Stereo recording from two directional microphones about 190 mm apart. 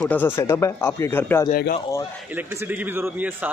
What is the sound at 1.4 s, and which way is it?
Speech, 55° left (ahead or behind).